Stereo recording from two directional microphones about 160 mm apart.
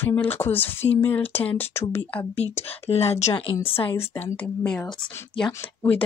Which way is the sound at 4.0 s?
10° left (ahead or behind).